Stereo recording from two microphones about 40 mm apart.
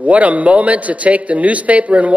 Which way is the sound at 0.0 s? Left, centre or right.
Right.